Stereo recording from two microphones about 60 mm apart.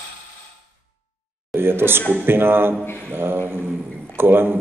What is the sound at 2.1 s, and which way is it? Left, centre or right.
Speech, right.